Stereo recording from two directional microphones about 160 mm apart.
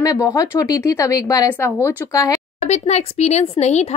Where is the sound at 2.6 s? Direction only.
45° left (ahead or behind).